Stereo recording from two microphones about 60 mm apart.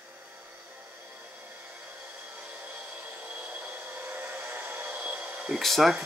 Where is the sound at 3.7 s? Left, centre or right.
Right.